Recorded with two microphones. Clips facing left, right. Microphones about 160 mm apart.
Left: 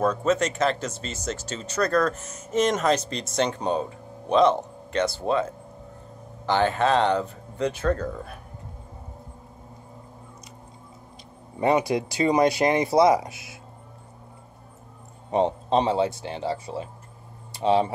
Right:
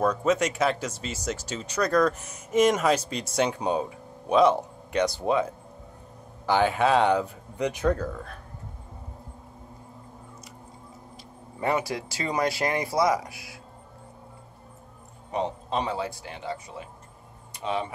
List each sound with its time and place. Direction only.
0.0 s speech: 10° right (ahead or behind)
11.6 s speech: 20° left (ahead or behind)
15.3 s speech: 30° left (ahead or behind)